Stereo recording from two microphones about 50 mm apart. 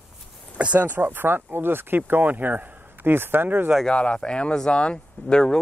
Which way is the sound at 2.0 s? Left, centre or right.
Right.